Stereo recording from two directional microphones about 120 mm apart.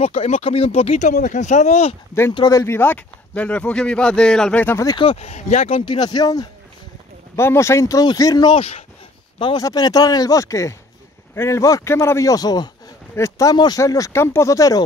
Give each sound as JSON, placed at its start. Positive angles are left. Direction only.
{"t": 0.0, "sound": "speech", "side_deg": 55}
{"t": 2.5, "sound": "a man's voice", "side_deg": 20}
{"t": 4.9, "sound": "speech", "side_deg": 55}
{"t": 5.7, "sound": "speech", "side_deg": 45}
{"t": 8.5, "sound": "speech", "side_deg": 55}
{"t": 9.4, "sound": "speech", "side_deg": 40}